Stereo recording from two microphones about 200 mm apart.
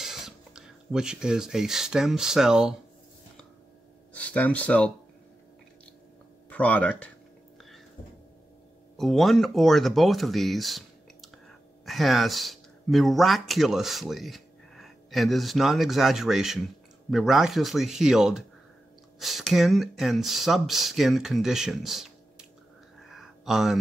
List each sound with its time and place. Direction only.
0.0 s speech: centre (ahead or behind)
4.1 s speech: 5° left (ahead or behind)
6.5 s speech: 5° left (ahead or behind)
8.9 s speech: centre (ahead or behind)
23.0 s a sound: centre (ahead or behind)